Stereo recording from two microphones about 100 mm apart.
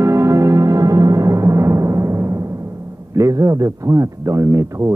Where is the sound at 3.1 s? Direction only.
35° right (ahead or behind).